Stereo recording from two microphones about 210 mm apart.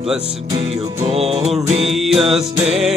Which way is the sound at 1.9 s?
Centre (ahead or behind).